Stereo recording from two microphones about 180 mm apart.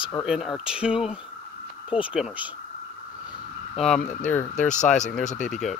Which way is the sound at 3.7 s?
5° left (ahead or behind).